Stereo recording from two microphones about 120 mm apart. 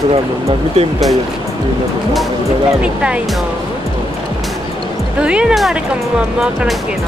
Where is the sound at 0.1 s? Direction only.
55° right (ahead or behind).